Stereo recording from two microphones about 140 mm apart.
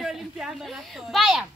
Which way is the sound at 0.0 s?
Centre (ahead or behind).